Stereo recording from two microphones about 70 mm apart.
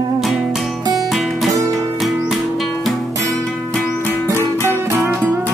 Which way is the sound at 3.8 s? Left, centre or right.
Left.